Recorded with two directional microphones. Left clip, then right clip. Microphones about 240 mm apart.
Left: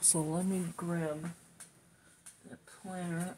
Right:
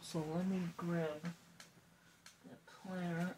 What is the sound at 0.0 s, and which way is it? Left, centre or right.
Speech, left.